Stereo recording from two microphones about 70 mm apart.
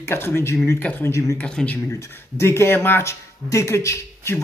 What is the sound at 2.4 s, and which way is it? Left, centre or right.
Speech, left.